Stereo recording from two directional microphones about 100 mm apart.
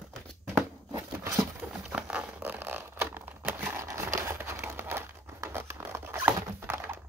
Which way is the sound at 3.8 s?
30° right (ahead or behind).